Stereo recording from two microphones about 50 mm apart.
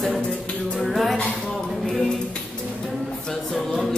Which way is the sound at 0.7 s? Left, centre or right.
Centre.